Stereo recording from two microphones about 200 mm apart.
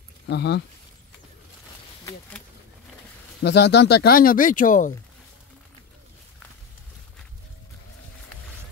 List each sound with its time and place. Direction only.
0.3 s speech: 55° left (ahead or behind)
3.4 s speech: 55° left (ahead or behind); by 4.9 s 40° left (ahead or behind)